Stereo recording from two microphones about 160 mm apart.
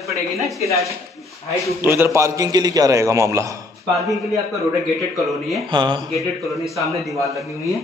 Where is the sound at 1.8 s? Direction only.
15° right (ahead or behind).